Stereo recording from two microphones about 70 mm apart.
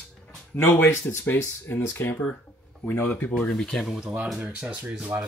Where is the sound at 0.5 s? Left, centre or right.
Left.